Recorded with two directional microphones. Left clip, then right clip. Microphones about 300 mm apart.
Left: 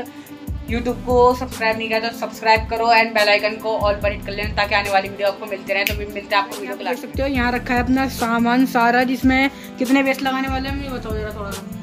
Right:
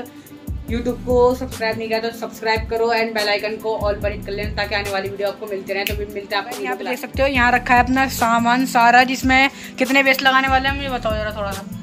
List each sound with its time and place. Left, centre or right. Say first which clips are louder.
0.7 s speech: even; centre